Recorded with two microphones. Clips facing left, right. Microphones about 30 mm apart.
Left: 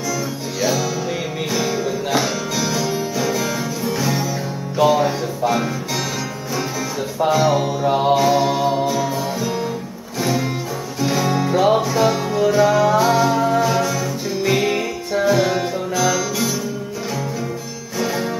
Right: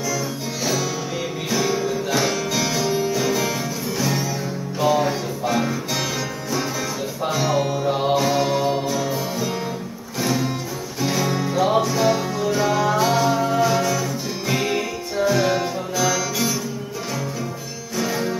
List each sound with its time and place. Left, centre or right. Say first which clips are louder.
0.6 s music: left 4 dB; centre
7.2 s music: left 4 dB; centre
17.9 s music: left 2 dB; centre